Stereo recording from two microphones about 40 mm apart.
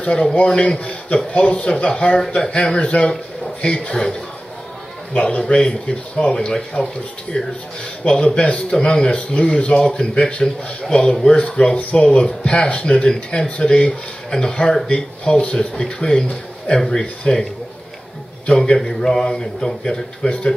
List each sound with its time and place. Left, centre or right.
0.0 s a man's voice: left
2.7 s a man's voice: left
3.1 s a man's voice: centre
5.1 s a man's voice: left
10.4 s speech: centre
11.6 s a man's voice: left; by 16.3 s centre
16.3 s a man's voice: left
18.8 s speech: centre
20.2 s speech: left